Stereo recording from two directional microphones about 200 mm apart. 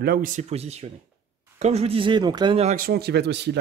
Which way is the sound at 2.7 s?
50° right (ahead or behind).